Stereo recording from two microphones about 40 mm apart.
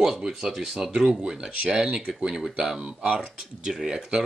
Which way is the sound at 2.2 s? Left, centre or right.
Centre.